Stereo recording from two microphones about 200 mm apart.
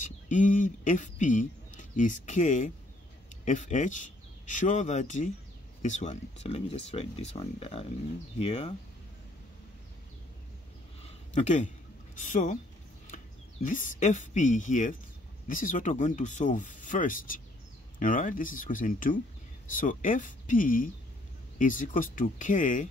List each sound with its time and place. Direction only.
0.0 s speech: 40° left (ahead or behind)
11.0 s a sound: 35° left (ahead or behind)
12.2 s speech: 40° left (ahead or behind)